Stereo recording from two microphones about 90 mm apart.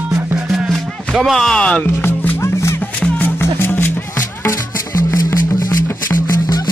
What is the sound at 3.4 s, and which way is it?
Music, 25° left (ahead or behind).